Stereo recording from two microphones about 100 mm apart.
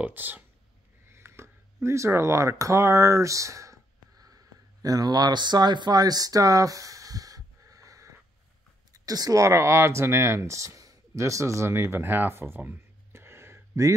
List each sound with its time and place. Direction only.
0.0 s speech: 20° right (ahead or behind)
1.1 s a sound: 25° right (ahead or behind)
4.8 s speech: 40° right (ahead or behind)